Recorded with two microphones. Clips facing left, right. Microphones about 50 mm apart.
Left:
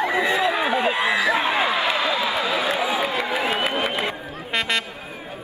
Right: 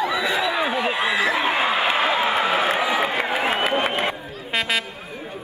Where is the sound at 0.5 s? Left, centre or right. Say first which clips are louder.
Left 1 dB; left.